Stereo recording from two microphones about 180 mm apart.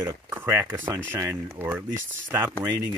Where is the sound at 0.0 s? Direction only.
10° right (ahead or behind).